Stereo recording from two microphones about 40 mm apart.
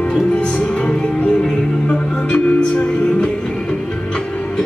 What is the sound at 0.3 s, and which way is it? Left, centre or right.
Music, left.